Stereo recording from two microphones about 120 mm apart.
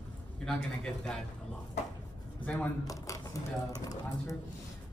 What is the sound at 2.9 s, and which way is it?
Speech, 30° left (ahead or behind).